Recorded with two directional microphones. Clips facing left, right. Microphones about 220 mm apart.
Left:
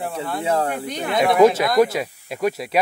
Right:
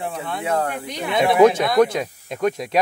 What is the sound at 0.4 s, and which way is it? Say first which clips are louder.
Speech: left 1 dB; 30° left (ahead or behind).